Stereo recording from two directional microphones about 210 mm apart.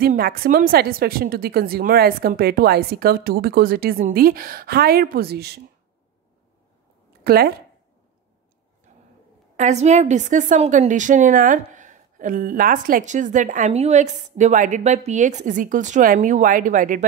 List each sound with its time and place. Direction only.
0.0 s a woman's voice: 45° right (ahead or behind)
7.2 s a woman's voice: 45° right (ahead or behind)
8.9 s a sound: 30° right (ahead or behind)
9.6 s a woman's voice: 35° right (ahead or behind)